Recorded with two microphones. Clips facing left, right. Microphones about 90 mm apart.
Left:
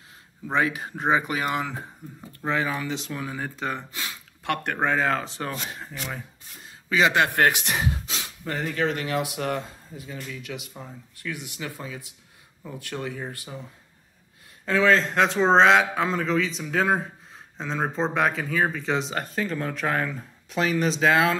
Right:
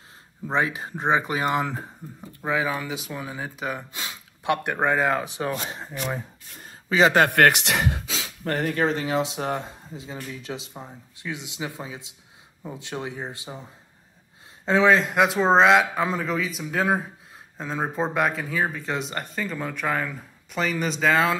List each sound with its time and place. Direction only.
0.5 s speech: 30° right (ahead or behind)
2.4 s speech: 5° right (ahead or behind)
3.9 s speech: 20° right (ahead or behind)
5.6 s speech: 25° right (ahead or behind)
7.2 s speech: 65° right (ahead or behind)
8.8 s speech: 25° right (ahead or behind)
14.6 s speech: 20° right (ahead or behind); by 21.4 s centre (ahead or behind)